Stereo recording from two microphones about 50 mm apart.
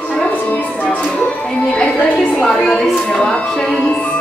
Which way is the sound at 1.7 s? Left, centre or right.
Centre.